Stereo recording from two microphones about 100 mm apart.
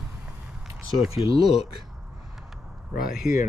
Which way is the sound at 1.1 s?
70° left (ahead or behind).